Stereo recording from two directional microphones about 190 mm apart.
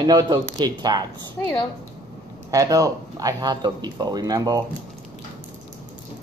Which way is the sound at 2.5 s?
15° right (ahead or behind).